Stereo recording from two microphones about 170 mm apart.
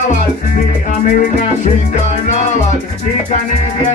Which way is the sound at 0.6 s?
45° left (ahead or behind).